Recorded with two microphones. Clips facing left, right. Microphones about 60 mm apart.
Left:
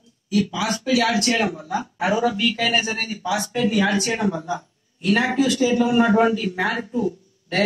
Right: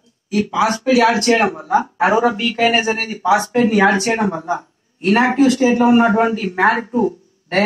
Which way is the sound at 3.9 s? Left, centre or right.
Right.